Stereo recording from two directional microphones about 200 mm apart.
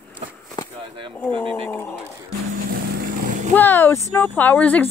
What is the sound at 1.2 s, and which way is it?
Speech, 5° left (ahead or behind).